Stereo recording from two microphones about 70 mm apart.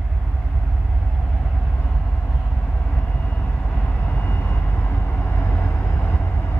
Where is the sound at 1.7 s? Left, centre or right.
Left.